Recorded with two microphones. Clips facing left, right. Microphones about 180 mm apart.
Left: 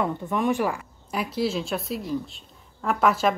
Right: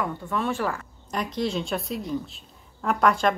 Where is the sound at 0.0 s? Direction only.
20° left (ahead or behind).